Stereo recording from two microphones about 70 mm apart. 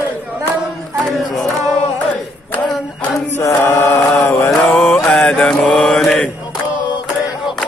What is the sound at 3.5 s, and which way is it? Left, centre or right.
Chant, left.